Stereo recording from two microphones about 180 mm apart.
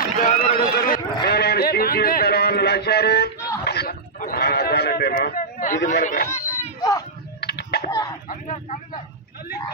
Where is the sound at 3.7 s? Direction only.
60° left (ahead or behind).